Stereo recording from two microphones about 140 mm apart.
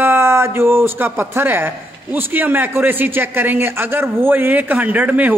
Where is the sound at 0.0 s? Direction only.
15° right (ahead or behind).